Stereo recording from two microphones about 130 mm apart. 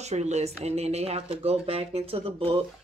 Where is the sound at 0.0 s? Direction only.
60° right (ahead or behind).